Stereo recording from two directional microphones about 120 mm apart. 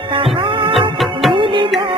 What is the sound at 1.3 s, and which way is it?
Music, 45° right (ahead or behind).